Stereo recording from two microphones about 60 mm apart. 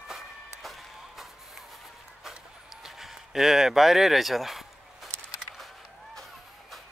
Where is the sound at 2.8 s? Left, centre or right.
Centre.